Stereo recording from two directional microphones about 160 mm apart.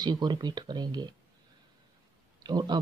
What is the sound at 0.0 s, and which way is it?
Speech, 25° right (ahead or behind).